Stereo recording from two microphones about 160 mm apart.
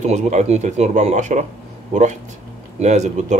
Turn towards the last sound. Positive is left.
turn(degrees=-45)  # may be behind; listen again after turning